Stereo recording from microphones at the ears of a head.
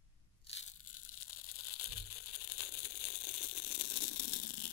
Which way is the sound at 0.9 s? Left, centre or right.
Left.